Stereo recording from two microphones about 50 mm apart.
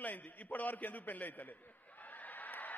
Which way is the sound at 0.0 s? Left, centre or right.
Left.